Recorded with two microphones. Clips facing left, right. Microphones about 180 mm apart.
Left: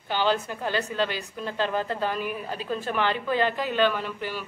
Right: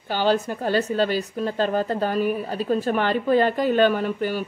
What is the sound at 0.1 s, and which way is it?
A woman's voice, 40° right (ahead or behind).